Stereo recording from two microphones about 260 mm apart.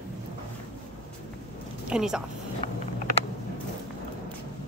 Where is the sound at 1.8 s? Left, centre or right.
Centre.